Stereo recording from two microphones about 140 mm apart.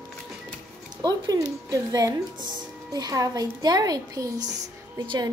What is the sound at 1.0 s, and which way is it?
A child's voice, 30° right (ahead or behind).